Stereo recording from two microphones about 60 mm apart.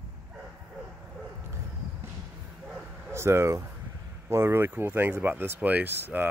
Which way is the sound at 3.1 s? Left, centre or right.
Right.